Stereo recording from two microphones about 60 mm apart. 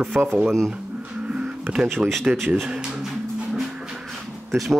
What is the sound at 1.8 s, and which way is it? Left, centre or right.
Speech, centre.